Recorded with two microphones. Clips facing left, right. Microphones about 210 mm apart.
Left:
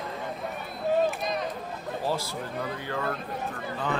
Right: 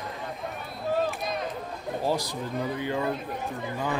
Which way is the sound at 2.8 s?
15° right (ahead or behind).